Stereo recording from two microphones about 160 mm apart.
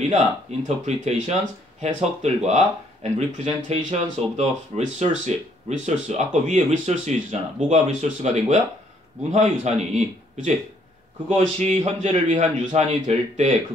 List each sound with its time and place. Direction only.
0.1 s speech: 45° right (ahead or behind)